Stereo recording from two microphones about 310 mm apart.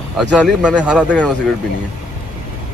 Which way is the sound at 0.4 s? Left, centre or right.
Centre.